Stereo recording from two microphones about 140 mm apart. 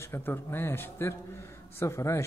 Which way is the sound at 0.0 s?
15° left (ahead or behind).